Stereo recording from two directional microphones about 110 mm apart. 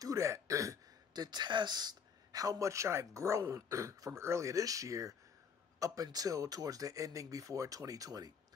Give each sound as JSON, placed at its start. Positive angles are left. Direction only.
{"t": 0.0, "sound": "speech", "side_deg": -30}